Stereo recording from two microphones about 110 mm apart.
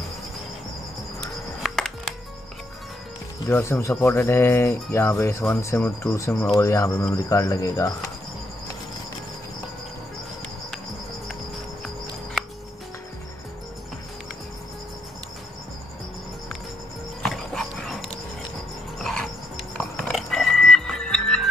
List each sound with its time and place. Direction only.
1.6 s music: 5° left (ahead or behind)
3.4 s speech: 20° left (ahead or behind)
5.8 s speech: 15° left (ahead or behind)
6.5 s speech: 30° left (ahead or behind)
17.2 s dog: 5° left (ahead or behind)
19.0 s music: 5° left (ahead or behind)